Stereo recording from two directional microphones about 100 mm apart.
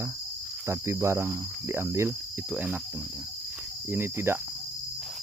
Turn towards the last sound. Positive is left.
turn(degrees=-20)  # may be behind; listen again after turning